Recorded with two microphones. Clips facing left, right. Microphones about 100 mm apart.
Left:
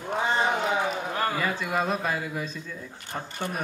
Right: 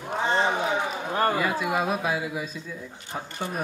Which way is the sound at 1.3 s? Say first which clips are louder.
Right 2 dB; 5° right (ahead or behind).